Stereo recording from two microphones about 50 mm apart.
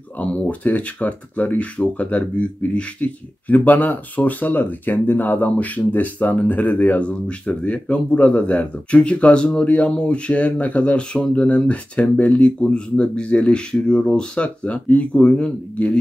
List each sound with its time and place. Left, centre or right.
0.2 s speech: left